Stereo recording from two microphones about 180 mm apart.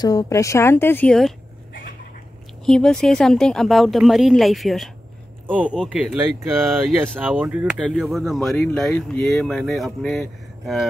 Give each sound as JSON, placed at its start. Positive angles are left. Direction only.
{"t": 0.0, "sound": "speech", "side_deg": 20}
{"t": 1.7, "sound": "a sound", "side_deg": 50}
{"t": 2.6, "sound": "speech", "side_deg": 5}